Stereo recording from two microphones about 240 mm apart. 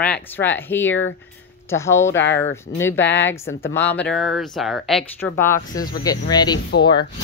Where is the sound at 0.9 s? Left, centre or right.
Left.